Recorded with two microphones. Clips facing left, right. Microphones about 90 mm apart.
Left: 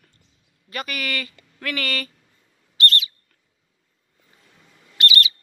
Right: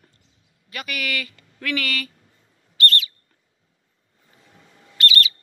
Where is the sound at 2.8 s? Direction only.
20° left (ahead or behind).